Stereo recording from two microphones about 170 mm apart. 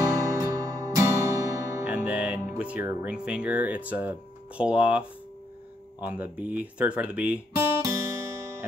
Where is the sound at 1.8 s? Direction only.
5° right (ahead or behind).